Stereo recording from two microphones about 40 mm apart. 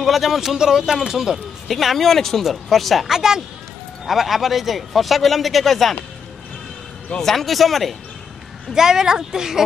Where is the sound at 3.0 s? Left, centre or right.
Centre.